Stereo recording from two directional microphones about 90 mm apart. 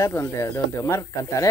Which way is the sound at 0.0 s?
30° left (ahead or behind).